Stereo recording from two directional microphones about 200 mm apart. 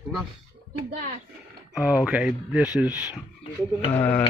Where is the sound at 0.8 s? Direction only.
45° right (ahead or behind).